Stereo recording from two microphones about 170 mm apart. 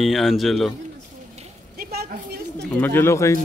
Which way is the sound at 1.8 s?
65° right (ahead or behind).